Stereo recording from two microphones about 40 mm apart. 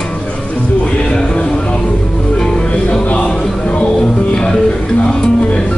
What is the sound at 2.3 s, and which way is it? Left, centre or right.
Music, centre.